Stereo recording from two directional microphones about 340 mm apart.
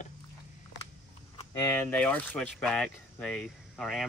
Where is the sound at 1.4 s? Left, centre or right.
Centre.